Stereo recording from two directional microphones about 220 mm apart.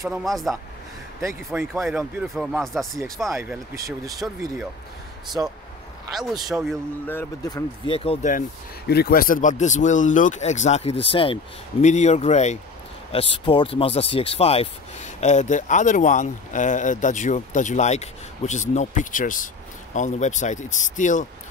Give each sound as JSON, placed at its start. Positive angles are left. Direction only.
{"t": 0.1, "sound": "speech", "side_deg": 0}
{"t": 3.3, "sound": "speech", "side_deg": -15}
{"t": 6.1, "sound": "speech", "side_deg": 0}
{"t": 7.1, "sound": "speech", "side_deg": 15}